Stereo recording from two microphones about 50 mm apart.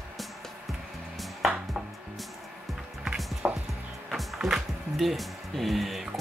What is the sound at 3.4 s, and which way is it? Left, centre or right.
Music, right.